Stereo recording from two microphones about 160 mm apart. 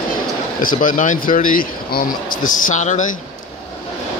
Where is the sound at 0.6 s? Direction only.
55° left (ahead or behind).